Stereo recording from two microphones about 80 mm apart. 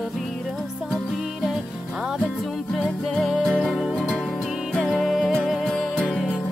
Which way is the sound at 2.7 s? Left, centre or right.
Centre.